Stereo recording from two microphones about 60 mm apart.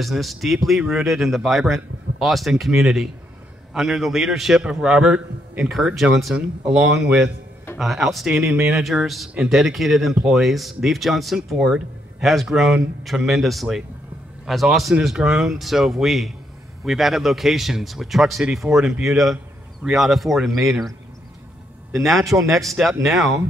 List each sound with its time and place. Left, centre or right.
0.0 s a man's voice: centre
6.3 s a man's voice: centre
7.8 s a man's voice: centre
21.9 s a man's voice: centre